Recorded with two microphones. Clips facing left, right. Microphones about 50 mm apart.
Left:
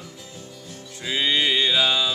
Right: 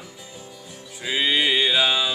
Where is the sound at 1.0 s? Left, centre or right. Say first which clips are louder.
Right 1 dB; centre.